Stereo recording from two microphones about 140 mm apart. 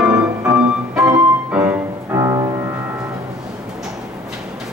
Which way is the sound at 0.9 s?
25° right (ahead or behind).